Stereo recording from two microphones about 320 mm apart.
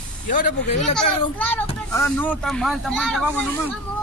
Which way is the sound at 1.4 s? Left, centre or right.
Centre.